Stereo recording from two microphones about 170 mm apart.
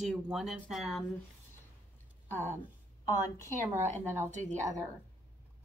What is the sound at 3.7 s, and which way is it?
Speech, 45° right (ahead or behind).